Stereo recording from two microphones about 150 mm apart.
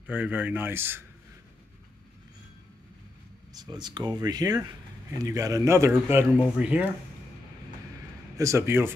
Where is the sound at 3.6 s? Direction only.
30° right (ahead or behind); by 6.9 s 10° right (ahead or behind).